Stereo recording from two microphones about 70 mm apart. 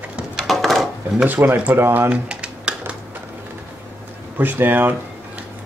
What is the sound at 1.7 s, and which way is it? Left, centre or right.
Speech, right.